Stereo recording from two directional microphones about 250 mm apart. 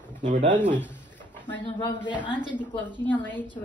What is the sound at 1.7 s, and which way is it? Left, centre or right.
Speech, centre.